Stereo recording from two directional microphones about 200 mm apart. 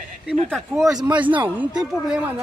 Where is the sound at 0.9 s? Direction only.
20° right (ahead or behind).